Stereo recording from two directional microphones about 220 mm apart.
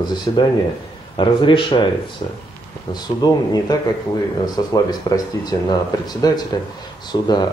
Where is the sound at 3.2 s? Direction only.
15° left (ahead or behind).